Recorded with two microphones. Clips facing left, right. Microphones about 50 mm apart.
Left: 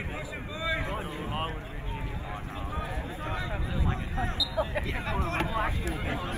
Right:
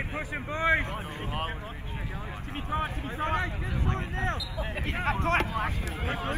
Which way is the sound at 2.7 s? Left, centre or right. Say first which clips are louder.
Right 7 dB; right.